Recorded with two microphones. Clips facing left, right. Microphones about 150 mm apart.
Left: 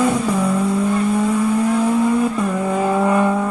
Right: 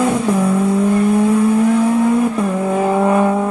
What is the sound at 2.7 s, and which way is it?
Vehicle, 20° right (ahead or behind).